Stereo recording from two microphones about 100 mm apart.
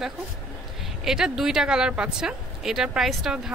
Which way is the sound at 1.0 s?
5° right (ahead or behind).